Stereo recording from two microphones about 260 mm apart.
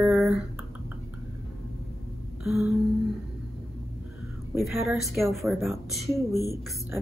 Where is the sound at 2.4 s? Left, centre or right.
Centre.